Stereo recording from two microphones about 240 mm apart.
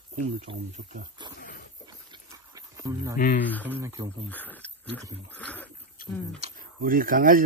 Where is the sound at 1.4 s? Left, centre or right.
Left.